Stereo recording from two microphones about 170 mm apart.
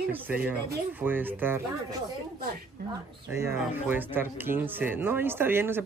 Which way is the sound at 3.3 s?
15° right (ahead or behind).